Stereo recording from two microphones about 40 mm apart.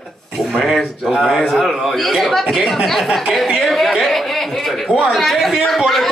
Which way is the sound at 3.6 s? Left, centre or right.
Centre.